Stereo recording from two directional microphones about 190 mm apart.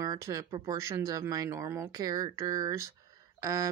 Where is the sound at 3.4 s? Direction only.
15° right (ahead or behind).